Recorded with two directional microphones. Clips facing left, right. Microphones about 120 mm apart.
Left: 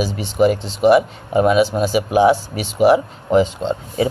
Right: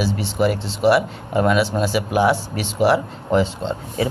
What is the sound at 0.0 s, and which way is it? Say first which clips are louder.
Speech: left 4 dB; 15° left (ahead or behind).